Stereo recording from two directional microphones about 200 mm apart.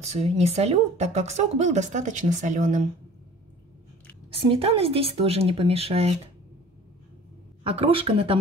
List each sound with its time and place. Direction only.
0.1 s a woman's voice: 30° right (ahead or behind)
4.4 s speech: 25° right (ahead or behind)
7.6 s speech: 30° right (ahead or behind)